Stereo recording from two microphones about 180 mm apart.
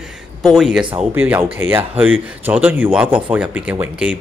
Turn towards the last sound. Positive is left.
turn(degrees=-10)  # may be behind; listen again after turning